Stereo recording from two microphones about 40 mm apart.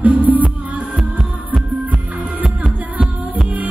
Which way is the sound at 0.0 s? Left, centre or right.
Right.